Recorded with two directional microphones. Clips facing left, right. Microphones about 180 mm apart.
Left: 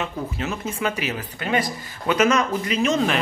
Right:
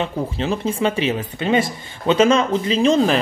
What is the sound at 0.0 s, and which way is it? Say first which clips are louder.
A man's voice: right 5 dB; 30° right (ahead or behind).